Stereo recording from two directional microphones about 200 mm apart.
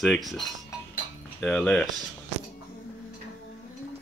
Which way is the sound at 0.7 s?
15° left (ahead or behind).